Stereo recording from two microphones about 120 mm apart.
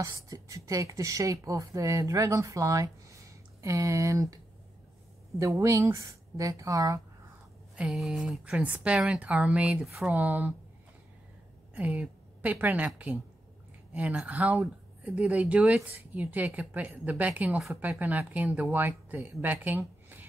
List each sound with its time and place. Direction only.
0.0 s speech: 30° right (ahead or behind)
5.4 s speech: 25° right (ahead or behind)
7.7 s speech: 5° right (ahead or behind)
11.7 s a woman's voice: 15° right (ahead or behind)